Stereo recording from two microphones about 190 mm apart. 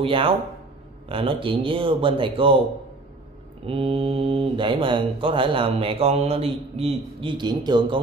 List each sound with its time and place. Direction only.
0.0 s speech: 30° right (ahead or behind)
3.6 s speech: 30° right (ahead or behind)